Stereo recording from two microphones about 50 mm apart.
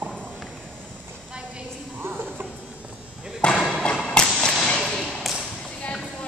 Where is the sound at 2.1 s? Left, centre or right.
Right.